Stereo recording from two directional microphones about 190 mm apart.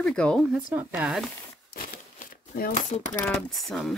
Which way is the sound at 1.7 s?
45° left (ahead or behind).